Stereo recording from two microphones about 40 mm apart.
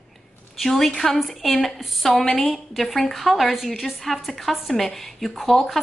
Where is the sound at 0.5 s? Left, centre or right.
Centre.